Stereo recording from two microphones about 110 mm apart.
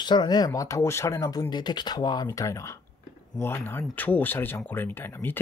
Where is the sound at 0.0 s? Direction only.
40° left (ahead or behind).